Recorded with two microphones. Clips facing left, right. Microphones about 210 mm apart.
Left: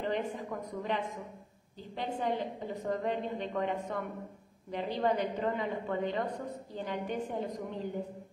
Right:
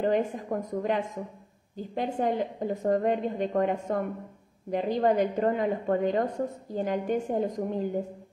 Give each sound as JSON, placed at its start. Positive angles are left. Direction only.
{"t": 0.0, "sound": "a woman's voice", "side_deg": -45}